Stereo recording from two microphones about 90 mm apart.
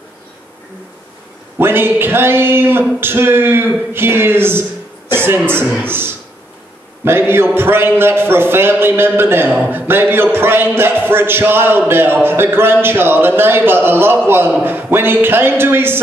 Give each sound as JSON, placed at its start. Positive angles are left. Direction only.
{"t": 1.6, "sound": "a man's voice", "side_deg": -25}